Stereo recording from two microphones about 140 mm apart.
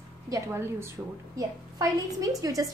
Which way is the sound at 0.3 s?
15° right (ahead or behind).